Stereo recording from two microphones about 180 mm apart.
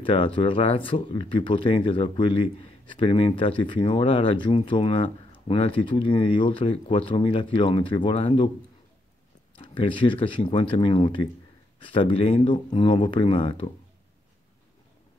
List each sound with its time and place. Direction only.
0.0 s speech: 30° left (ahead or behind)
9.6 s speech: 30° left (ahead or behind)